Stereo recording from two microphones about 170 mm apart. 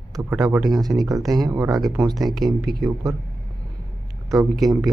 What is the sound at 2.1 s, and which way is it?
Speech, centre (ahead or behind).